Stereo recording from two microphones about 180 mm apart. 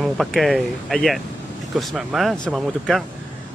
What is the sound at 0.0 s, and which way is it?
Speech, centre (ahead or behind).